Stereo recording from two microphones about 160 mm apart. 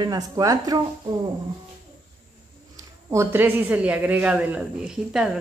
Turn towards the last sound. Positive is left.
turn(degrees=-5)  # may be behind; listen again after turning